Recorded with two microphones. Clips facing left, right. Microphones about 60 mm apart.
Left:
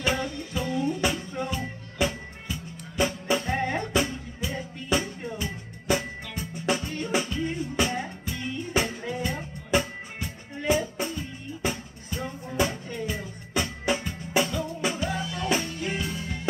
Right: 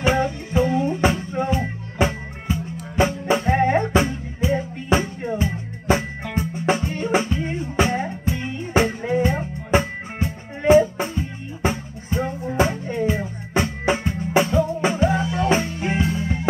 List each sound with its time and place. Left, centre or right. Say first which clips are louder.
0.0 s music: right 7 dB; right